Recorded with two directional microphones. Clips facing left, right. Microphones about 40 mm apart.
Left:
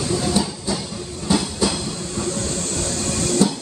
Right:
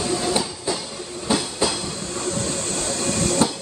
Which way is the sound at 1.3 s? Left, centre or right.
Centre.